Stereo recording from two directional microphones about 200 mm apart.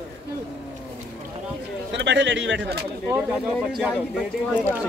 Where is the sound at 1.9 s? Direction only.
60° right (ahead or behind).